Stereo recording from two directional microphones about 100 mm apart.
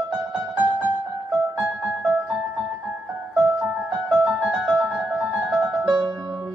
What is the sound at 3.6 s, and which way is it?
Music, 15° right (ahead or behind).